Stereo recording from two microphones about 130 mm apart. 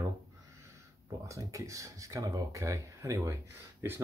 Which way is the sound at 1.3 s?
25° right (ahead or behind).